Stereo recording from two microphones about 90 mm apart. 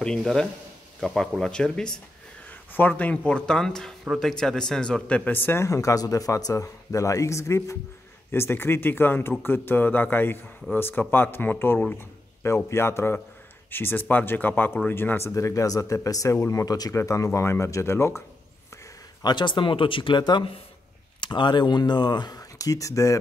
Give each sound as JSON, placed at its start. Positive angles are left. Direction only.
{"t": 0.0, "sound": "speech", "side_deg": 5}
{"t": 2.7, "sound": "a man's voice", "side_deg": 20}
{"t": 19.2, "sound": "speech", "side_deg": 60}